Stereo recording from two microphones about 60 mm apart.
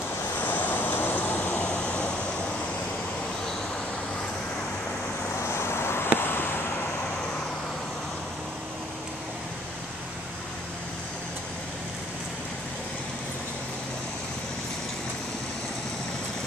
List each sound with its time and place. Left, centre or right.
0.4 s vehicle: left
1.6 s vehicle: centre
5.5 s vehicle: left